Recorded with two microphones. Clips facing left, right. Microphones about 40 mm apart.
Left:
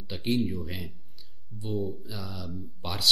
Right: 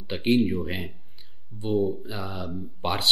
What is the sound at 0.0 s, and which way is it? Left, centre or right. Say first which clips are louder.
Speech: right 6 dB; right.